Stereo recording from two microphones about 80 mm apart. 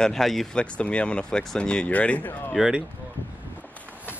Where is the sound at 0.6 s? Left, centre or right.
Centre.